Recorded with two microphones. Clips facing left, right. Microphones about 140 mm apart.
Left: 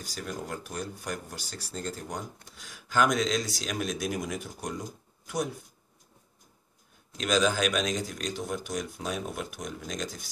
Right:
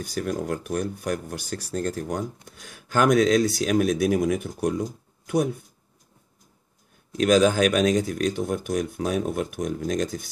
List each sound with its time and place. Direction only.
0.0 s speech: 55° right (ahead or behind)
7.2 s speech: 50° right (ahead or behind)